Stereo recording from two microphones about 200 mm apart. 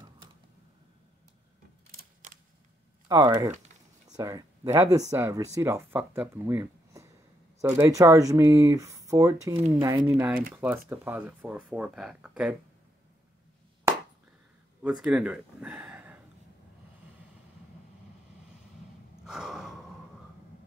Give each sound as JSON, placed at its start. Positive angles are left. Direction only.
{"t": 3.1, "sound": "speech", "side_deg": -20}
{"t": 14.8, "sound": "speech", "side_deg": -5}
{"t": 19.2, "sound": "a sound", "side_deg": -5}